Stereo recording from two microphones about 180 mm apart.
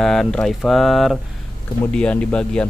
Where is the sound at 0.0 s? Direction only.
Centre (ahead or behind).